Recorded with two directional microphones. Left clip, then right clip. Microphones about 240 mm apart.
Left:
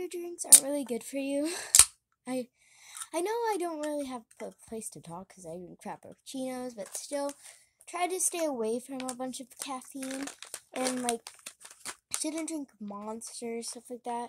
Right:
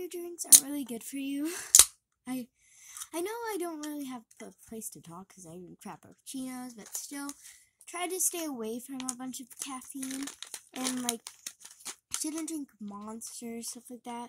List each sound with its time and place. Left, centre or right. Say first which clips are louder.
0.0 s a sound: left 2 dB; centre
0.7 s a child's voice: left 6 dB; centre
9.9 s crumpling: left 1 dB; centre
12.2 s speech: left 2 dB; centre